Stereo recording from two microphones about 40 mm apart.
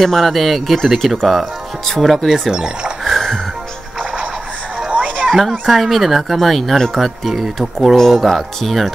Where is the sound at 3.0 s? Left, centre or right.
Centre.